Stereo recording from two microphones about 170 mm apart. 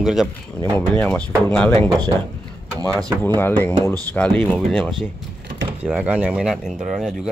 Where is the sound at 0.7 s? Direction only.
10° left (ahead or behind).